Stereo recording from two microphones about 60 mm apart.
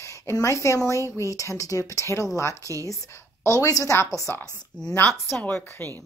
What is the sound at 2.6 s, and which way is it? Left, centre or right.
Speech, right.